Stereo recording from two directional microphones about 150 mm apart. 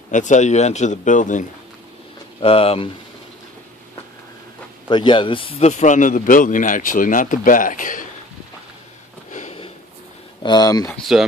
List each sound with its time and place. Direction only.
0.1 s speech: 55° left (ahead or behind)
2.4 s a man's voice: 40° left (ahead or behind)
4.8 s a man's voice: 30° left (ahead or behind)
5.7 s speech: 55° left (ahead or behind)
9.3 s sniff: 55° left (ahead or behind)
10.4 s speech: 25° left (ahead or behind)
10.9 s speech: centre (ahead or behind)